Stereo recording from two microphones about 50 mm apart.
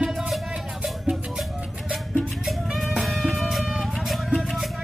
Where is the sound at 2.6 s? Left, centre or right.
Centre.